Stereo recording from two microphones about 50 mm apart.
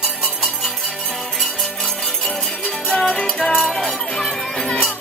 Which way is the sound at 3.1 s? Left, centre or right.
Centre.